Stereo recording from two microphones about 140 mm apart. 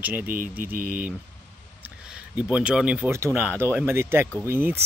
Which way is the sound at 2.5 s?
10° right (ahead or behind).